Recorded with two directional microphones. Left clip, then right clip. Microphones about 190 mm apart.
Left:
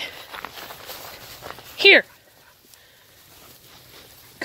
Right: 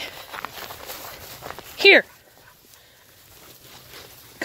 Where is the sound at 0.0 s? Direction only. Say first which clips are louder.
Even; 5° right (ahead or behind).